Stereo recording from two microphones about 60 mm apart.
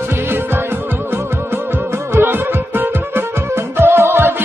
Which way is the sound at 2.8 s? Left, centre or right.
Right.